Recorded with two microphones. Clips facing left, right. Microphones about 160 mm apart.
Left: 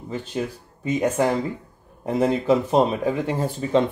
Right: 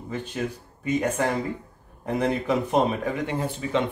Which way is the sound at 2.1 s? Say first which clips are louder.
Left 5 dB; 25° left (ahead or behind).